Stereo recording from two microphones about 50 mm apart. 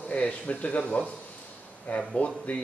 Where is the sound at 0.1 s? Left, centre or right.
Left.